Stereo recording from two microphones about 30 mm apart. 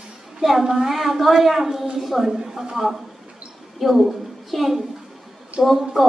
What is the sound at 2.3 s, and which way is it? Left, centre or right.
A woman's voice, centre.